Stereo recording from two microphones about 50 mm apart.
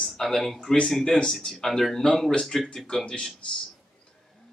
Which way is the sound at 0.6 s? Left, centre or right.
Left.